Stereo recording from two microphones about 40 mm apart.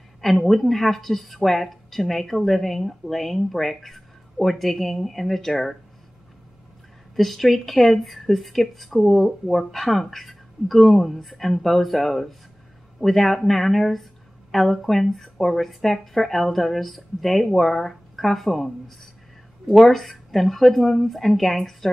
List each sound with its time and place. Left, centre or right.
0.2 s a woman's voice: centre
7.2 s a woman's voice: centre
19.7 s a woman's voice: centre